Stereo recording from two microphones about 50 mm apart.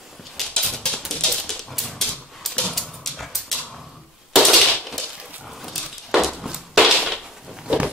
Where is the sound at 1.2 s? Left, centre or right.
Centre.